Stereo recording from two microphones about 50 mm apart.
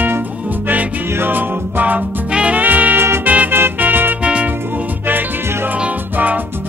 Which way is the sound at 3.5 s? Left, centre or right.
Right.